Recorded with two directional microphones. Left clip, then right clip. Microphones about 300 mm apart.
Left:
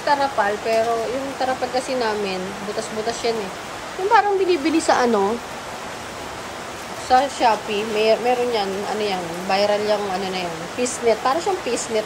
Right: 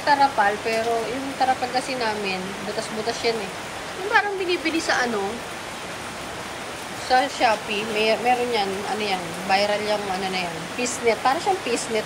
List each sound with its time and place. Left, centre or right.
0.1 s speech: centre
4.1 s speech: centre
7.1 s speech: centre